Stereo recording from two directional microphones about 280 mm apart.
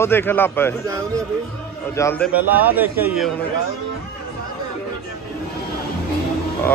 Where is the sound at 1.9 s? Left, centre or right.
Centre.